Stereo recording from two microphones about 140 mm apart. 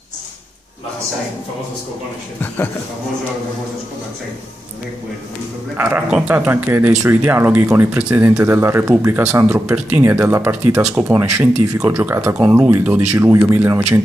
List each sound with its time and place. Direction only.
2.4 s speech: 15° left (ahead or behind)
5.8 s speech: 15° right (ahead or behind)